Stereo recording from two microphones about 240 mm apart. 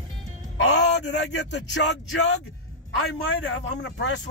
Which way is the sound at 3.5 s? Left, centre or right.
Left.